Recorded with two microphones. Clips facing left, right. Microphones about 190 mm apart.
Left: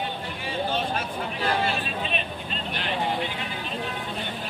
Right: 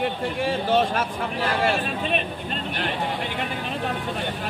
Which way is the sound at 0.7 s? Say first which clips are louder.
Right 7 dB; 90° right.